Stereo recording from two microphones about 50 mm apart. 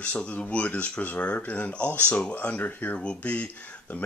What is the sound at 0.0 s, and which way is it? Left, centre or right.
Speech, left.